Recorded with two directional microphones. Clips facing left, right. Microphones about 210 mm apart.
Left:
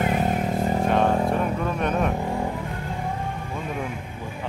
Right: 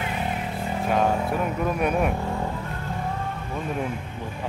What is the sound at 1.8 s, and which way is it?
Speech, 10° right (ahead or behind).